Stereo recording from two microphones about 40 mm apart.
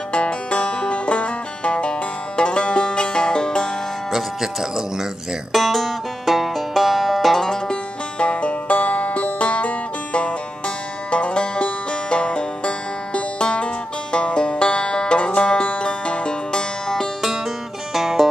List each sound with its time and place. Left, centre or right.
0.1 s music: left
4.1 s speech: centre
5.5 s banjo: centre
7.7 s music: left
17.9 s music: centre